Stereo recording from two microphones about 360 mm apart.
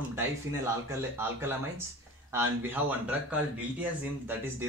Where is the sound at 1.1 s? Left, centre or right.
Centre.